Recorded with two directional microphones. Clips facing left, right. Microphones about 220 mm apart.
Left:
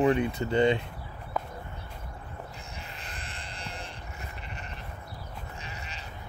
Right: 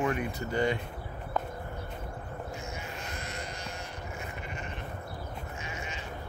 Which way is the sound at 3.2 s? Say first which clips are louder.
Right 5 dB; 30° left (ahead or behind).